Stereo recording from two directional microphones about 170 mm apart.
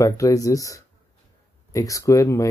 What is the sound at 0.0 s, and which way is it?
Speech, 20° left (ahead or behind).